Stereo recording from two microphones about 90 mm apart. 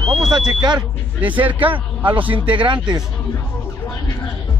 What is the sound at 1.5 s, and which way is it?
A man's voice, 70° right (ahead or behind).